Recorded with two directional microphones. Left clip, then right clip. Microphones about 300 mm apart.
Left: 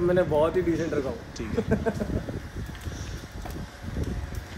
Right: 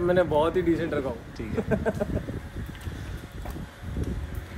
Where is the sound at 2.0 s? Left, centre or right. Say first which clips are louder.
Right 3 dB; centre.